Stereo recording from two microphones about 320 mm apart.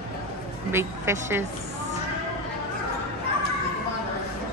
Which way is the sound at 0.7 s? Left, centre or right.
Centre.